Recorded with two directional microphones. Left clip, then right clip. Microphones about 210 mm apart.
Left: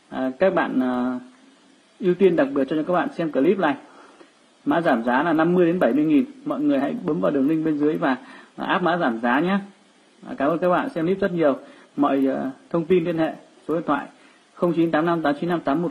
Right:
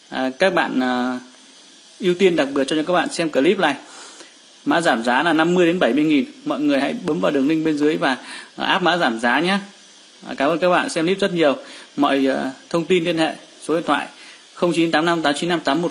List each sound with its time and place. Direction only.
0.1 s a man's voice: 20° right (ahead or behind)